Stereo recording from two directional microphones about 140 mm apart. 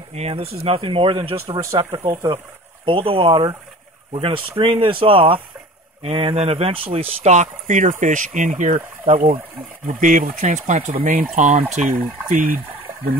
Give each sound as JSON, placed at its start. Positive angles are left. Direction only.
{"t": 0.1, "sound": "speech", "side_deg": -45}
{"t": 1.9, "sound": "speech", "side_deg": -20}
{"t": 2.3, "sound": "speech", "side_deg": -40}
{"t": 11.3, "sound": "speech", "side_deg": -65}
{"t": 11.9, "sound": "speech", "side_deg": -85}